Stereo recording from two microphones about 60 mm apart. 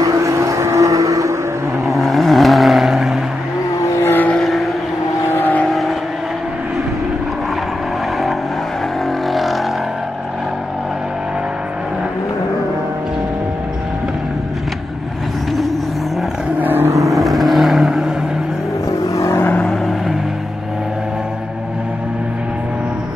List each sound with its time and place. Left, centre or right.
0.0 s vehicle: right
1.9 s vehicle: centre
4.0 s vehicle: left
5.3 s vehicle: left
5.7 s vehicle: centre
9.3 s vehicle: centre
16.5 s vehicle: right
16.9 s vehicle: right
17.2 s vehicle: centre
18.9 s vehicle: left
19.6 s vehicle: centre